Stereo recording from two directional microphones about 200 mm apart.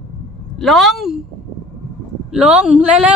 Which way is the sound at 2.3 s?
5° right (ahead or behind).